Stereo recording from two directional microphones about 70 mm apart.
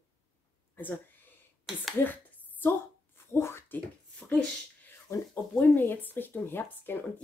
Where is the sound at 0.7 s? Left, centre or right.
Left.